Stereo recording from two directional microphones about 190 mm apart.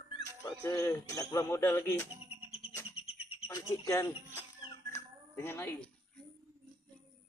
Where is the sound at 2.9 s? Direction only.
30° left (ahead or behind).